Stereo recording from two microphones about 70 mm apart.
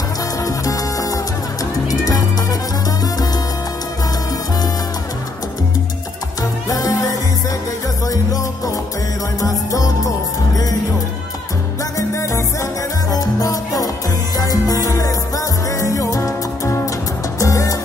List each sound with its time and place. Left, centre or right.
0.4 s music: left
6.7 s music: left
12.2 s salsa music: left
13.1 s music: left